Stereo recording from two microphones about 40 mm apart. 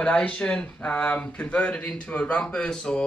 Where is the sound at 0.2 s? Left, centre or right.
Left.